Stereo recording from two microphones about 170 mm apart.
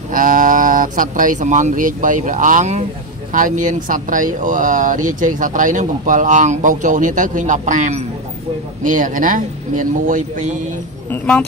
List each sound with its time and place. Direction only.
0.1 s speech: 55° right (ahead or behind)
11.1 s a woman's voice: 10° left (ahead or behind)